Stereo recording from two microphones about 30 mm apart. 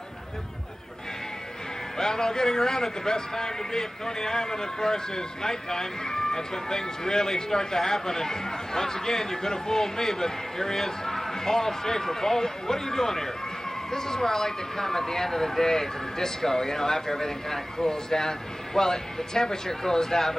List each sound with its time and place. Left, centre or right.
2.0 s speech: centre